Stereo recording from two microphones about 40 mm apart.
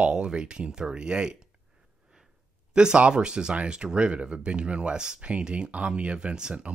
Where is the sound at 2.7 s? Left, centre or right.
Right.